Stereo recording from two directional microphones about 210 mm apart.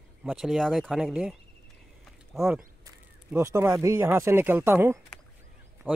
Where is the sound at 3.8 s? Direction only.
15° right (ahead or behind).